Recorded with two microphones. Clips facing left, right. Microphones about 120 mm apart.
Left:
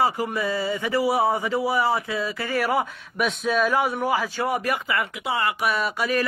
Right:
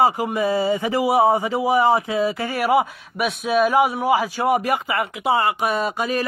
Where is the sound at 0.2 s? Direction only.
20° right (ahead or behind).